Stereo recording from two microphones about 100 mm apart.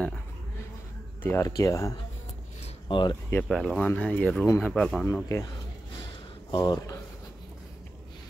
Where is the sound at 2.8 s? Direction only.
50° left (ahead or behind).